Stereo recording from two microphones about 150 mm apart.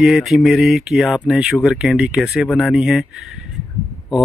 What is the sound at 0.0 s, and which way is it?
Speech, centre (ahead or behind).